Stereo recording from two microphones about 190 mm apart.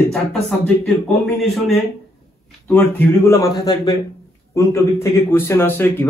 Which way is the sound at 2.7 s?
10° left (ahead or behind).